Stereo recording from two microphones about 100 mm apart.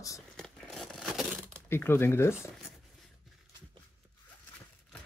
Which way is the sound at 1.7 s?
25° left (ahead or behind).